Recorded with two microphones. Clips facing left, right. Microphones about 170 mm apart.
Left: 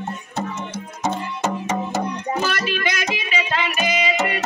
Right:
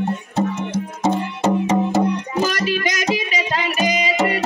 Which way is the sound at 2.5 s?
40° right (ahead or behind).